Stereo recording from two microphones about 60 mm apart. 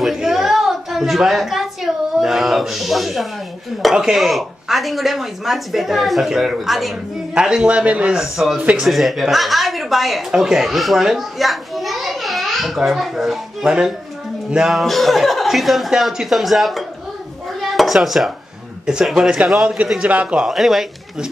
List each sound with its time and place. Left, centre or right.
0.0 s a sound: centre
3.9 s speech: centre
7.3 s a man's voice: centre
8.2 s a woman's voice: centre
13.7 s speech: centre
17.6 s dishes: centre
19.0 s speech: centre
20.0 s a man's voice: right
20.3 s speech: centre